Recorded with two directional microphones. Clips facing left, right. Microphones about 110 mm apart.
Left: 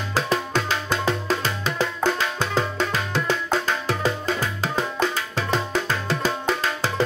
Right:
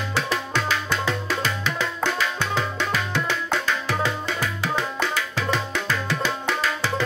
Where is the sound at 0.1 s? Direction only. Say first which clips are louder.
Left 4 dB; 40° left (ahead or behind).